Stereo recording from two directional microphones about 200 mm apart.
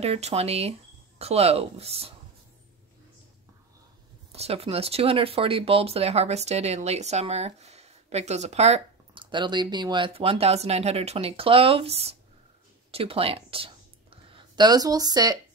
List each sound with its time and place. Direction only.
0.0 s speech: 30° right (ahead or behind)
4.3 s speech: 30° right (ahead or behind)
12.9 s a sound: 30° right (ahead or behind)